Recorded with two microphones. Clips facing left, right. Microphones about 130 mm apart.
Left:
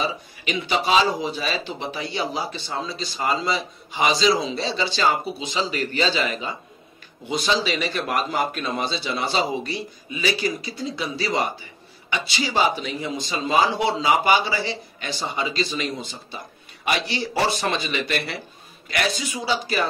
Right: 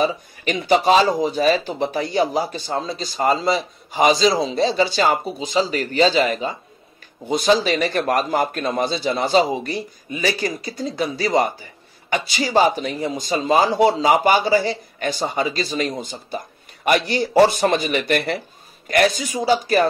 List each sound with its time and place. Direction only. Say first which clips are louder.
0.0 s speech: right 6 dB; 45° right (ahead or behind)